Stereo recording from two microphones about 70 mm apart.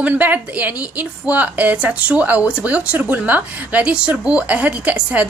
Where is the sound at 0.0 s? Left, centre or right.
Right.